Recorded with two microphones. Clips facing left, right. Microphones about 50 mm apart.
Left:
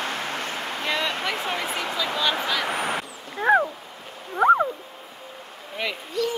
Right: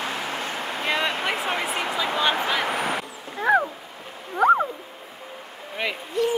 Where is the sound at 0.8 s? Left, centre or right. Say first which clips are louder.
Right 2 dB; right.